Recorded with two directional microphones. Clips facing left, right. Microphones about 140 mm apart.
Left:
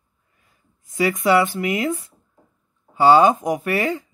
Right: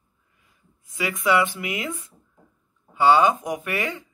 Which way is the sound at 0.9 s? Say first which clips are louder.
Left 5 dB; 35° left (ahead or behind).